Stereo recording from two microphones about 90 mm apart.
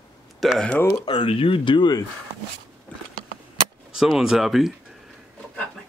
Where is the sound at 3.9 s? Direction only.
5° right (ahead or behind).